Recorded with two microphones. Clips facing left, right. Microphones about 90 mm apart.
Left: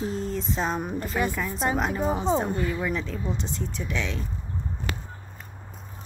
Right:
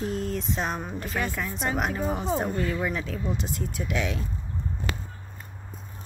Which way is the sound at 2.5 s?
10° left (ahead or behind).